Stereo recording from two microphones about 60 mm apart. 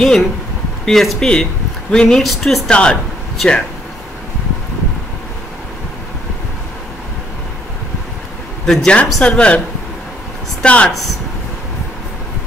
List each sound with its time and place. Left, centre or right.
0.0 s speech: centre
2.7 s speech: centre
8.6 s speech: centre
10.6 s speech: left